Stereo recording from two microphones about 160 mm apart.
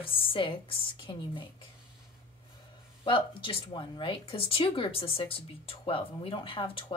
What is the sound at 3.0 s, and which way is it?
Speech, 30° left (ahead or behind).